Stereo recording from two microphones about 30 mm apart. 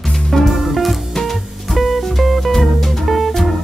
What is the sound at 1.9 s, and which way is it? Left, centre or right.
Music, centre.